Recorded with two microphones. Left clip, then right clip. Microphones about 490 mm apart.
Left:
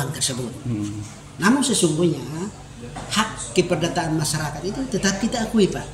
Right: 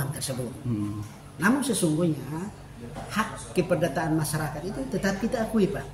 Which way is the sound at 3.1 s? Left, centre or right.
Right.